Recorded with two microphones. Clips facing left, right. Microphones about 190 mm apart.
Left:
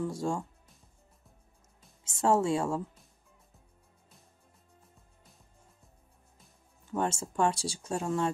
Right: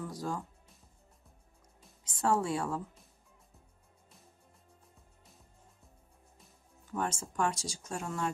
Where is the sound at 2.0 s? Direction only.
25° left (ahead or behind).